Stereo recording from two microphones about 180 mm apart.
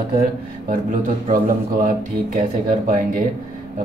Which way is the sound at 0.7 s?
45° right (ahead or behind).